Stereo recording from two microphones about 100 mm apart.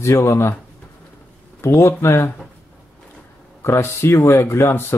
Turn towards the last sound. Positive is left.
turn(degrees=25)  # may be behind; listen again after turning